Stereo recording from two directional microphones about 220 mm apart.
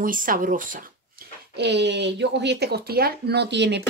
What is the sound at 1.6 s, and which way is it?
Speech, 50° right (ahead or behind).